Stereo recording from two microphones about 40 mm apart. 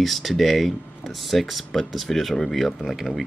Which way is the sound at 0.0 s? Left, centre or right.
Centre.